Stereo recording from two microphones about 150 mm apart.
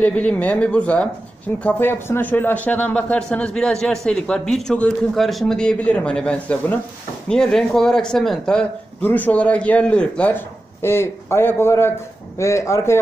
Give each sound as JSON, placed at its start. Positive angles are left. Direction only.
{"t": 0.0, "sound": "a man's voice", "side_deg": 10}